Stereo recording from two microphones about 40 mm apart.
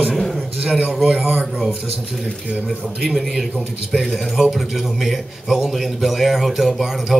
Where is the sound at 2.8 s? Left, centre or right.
Centre.